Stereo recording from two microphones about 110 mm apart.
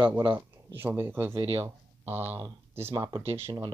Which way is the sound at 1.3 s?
60° right (ahead or behind).